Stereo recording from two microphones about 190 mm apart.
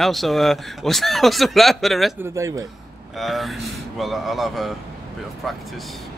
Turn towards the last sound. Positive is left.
turn(degrees=0)  # may be behind; listen again after turning